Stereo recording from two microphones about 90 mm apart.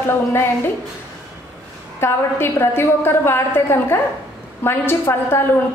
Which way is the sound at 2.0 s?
25° left (ahead or behind).